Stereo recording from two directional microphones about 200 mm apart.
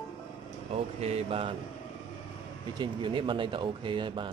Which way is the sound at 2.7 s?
25° right (ahead or behind).